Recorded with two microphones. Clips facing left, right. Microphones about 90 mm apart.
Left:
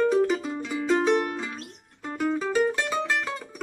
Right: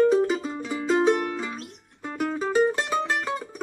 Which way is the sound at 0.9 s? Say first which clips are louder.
Right 1 dB; 20° right (ahead or behind).